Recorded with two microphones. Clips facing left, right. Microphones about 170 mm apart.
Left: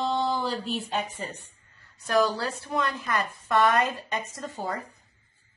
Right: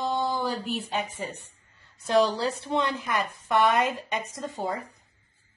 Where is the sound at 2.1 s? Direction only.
20° right (ahead or behind).